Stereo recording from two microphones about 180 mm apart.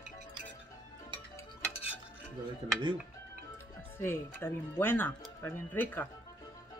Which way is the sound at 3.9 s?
10° left (ahead or behind).